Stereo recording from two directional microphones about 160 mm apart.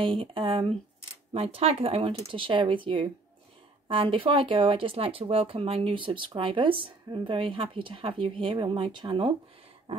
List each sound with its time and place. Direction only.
0.0 s speech: 35° right (ahead or behind)